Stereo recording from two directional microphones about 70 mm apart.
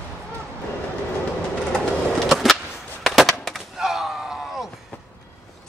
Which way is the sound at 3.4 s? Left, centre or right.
Centre.